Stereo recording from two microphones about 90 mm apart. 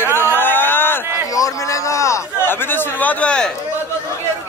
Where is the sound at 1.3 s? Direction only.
40° left (ahead or behind); by 3.5 s 10° left (ahead or behind).